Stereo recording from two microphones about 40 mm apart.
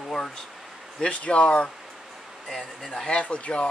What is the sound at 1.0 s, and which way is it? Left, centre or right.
Speech, left.